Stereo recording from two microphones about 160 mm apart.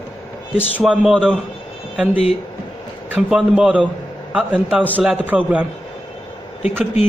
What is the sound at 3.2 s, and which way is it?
A man's voice, 5° right (ahead or behind).